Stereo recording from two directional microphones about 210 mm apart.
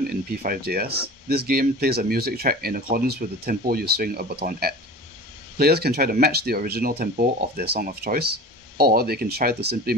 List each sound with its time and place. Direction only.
0.4 s speech: 45° right (ahead or behind)